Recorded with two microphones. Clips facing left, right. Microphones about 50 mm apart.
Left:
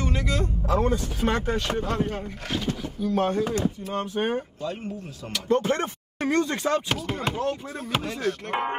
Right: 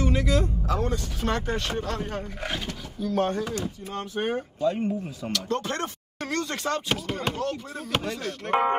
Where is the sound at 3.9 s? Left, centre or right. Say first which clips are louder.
Even; left.